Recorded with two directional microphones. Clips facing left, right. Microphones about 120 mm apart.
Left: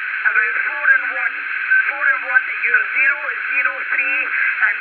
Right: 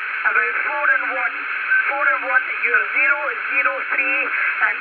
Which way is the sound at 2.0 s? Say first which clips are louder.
Even; 35° right (ahead or behind).